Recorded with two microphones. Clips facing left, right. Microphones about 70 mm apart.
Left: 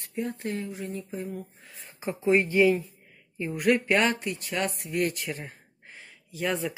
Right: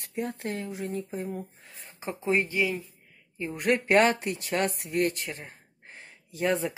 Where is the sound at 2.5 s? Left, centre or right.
Left.